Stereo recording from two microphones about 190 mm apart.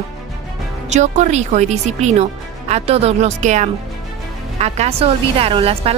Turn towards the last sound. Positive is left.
turn(degrees=-30)  # may be behind; listen again after turning